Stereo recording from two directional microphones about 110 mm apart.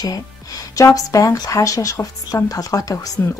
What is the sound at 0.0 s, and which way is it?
Speech, 35° left (ahead or behind).